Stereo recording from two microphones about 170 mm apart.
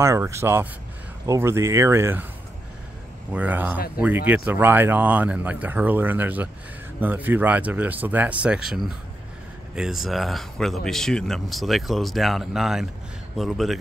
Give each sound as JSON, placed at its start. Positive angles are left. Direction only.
{"t": 0.0, "sound": "speech", "side_deg": -15}
{"t": 3.3, "sound": "speech", "side_deg": -10}